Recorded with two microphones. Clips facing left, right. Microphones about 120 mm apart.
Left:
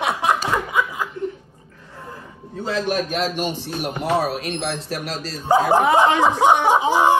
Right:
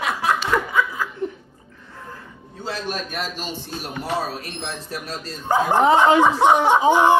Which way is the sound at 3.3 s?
65° left (ahead or behind).